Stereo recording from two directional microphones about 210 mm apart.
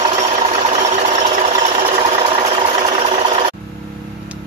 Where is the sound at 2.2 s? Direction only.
25° right (ahead or behind).